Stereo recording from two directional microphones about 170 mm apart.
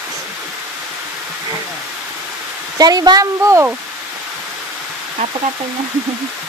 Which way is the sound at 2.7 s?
25° right (ahead or behind).